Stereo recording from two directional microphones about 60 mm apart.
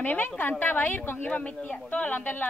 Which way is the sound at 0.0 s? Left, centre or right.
Left.